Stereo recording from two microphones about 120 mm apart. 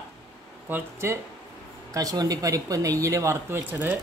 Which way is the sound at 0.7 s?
20° right (ahead or behind).